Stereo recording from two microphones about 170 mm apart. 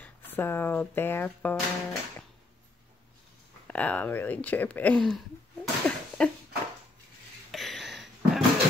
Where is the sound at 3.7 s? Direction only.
10° left (ahead or behind).